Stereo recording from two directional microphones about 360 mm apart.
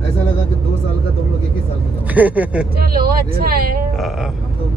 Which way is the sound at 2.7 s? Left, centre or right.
Right.